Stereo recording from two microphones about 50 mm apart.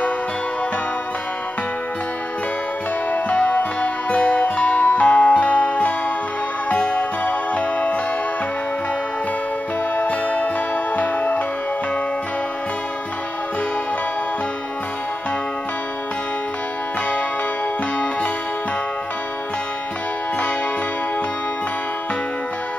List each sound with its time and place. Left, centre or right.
3.1 s music: left
9.9 s music: left